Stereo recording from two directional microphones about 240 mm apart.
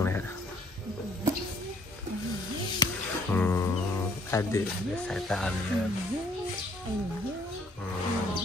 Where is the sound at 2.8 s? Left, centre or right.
Centre.